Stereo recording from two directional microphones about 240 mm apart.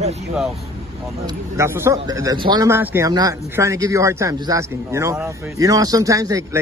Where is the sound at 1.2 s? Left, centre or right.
Centre.